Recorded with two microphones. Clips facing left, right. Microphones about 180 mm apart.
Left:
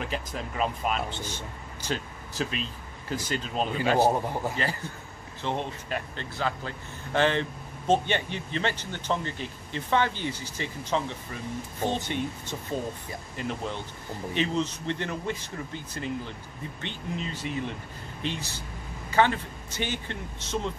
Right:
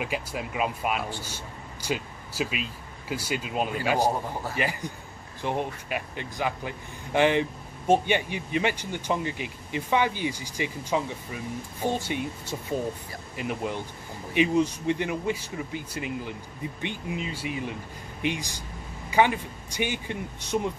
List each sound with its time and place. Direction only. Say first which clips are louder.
0.0 s a man's voice: right 2 dB; 10° right (ahead or behind)
4.3 s speech: left 3 dB; 20° left (ahead or behind)
4.6 s a man's voice: right 2 dB; 15° right (ahead or behind)